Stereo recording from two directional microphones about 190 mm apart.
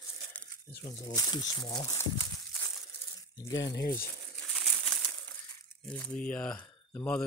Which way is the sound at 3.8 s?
50° left (ahead or behind).